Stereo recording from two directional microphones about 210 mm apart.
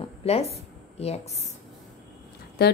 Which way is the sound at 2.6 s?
50° left (ahead or behind).